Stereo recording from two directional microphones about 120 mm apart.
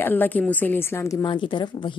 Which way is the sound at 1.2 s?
45° left (ahead or behind).